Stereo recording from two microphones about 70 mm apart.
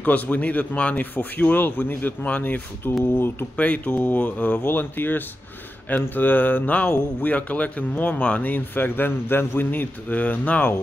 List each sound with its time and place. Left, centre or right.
0.0 s speech: left